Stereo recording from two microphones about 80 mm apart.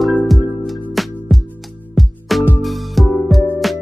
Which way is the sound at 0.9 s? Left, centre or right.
Centre.